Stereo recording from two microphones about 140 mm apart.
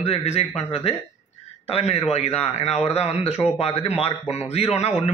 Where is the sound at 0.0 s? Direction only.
50° left (ahead or behind).